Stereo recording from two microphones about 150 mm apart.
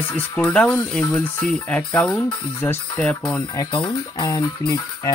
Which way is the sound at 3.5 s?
30° left (ahead or behind).